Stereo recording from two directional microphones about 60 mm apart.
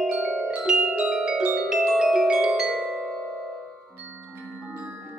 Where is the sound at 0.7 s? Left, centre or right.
Centre.